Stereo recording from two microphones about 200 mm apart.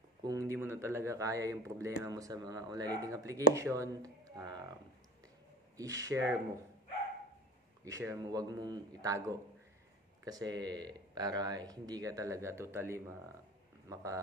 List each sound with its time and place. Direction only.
0.2 s speech: 15° right (ahead or behind)
5.8 s speech: 15° right (ahead or behind)
7.8 s speech: 15° right (ahead or behind)